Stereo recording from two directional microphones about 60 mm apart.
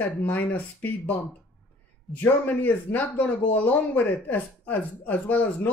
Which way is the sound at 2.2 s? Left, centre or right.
Left.